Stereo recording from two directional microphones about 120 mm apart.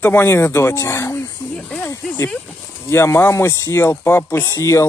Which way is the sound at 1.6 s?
10° left (ahead or behind).